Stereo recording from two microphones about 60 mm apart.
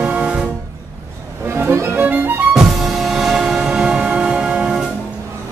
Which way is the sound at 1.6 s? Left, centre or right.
Right.